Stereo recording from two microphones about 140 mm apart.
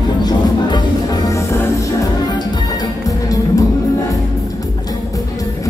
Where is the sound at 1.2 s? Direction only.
25° left (ahead or behind).